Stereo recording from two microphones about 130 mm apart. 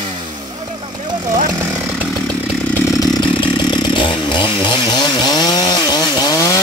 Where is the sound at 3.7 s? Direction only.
35° left (ahead or behind).